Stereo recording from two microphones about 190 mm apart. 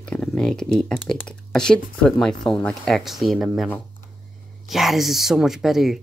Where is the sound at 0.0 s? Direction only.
5° left (ahead or behind).